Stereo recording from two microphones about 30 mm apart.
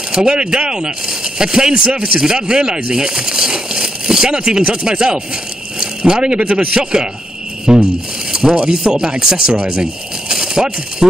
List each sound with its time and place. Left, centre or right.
0.1 s speech: right
5.8 s a sound: right
6.2 s a man's voice: right
6.5 s speech: right